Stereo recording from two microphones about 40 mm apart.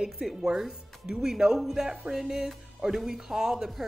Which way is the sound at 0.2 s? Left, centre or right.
Centre.